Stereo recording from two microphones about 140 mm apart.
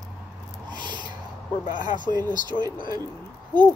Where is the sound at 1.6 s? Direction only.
65° left (ahead or behind).